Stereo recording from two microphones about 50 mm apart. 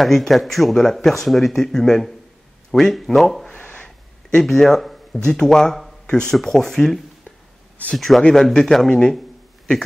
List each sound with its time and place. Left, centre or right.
0.0 s speech: centre
3.6 s a sound: centre
4.5 s a man's voice: centre